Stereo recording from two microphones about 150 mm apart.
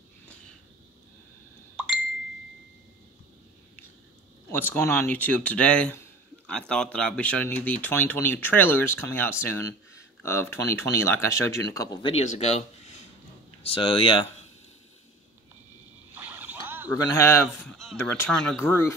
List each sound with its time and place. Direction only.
4.5 s speech: 15° left (ahead or behind)
12.0 s speech: 45° left (ahead or behind)
16.2 s a sound: 10° right (ahead or behind)
16.9 s speech: 20° left (ahead or behind)
17.6 s speech: centre (ahead or behind)
17.9 s speech: 15° left (ahead or behind)
18.3 s speech: 5° left (ahead or behind)
18.6 s speech: 15° left (ahead or behind)